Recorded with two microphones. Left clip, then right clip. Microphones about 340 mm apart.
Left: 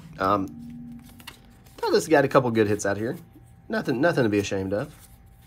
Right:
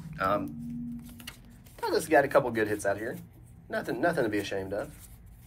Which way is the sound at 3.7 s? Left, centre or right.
Centre.